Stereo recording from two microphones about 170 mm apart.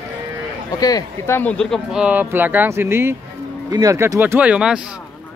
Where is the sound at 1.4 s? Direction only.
5° left (ahead or behind).